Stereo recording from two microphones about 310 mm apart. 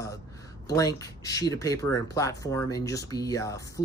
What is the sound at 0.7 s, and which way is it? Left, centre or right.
Speech, centre.